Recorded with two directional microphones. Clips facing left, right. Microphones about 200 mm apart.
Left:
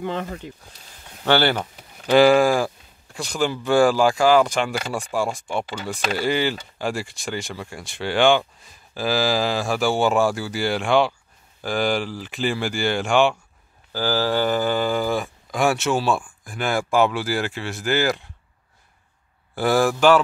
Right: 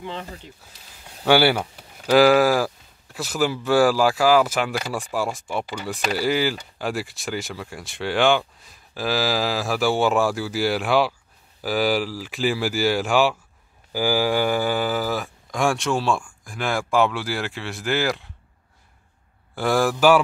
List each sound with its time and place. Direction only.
0.0 s speech: 55° left (ahead or behind)
0.6 s speech: 5° right (ahead or behind)
19.5 s speech: centre (ahead or behind)